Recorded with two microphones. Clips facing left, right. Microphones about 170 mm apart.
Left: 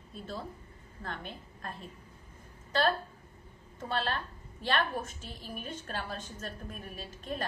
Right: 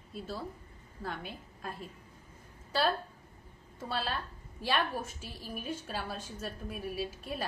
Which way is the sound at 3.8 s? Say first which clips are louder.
Left 2 dB; 5° right (ahead or behind).